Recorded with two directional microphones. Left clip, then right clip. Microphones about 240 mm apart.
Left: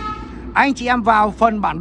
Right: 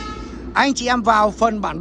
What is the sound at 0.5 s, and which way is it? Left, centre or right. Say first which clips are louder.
Speech: left 2 dB; centre.